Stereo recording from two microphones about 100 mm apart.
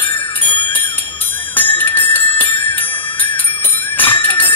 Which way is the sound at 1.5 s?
20° left (ahead or behind).